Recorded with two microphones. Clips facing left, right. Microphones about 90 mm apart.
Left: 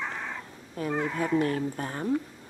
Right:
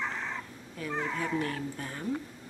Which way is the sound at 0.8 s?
40° left (ahead or behind).